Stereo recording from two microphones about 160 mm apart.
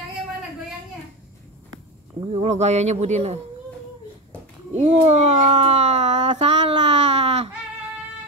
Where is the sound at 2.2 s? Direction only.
40° right (ahead or behind).